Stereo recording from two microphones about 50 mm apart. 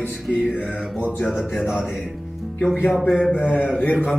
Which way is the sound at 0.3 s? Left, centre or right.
Left.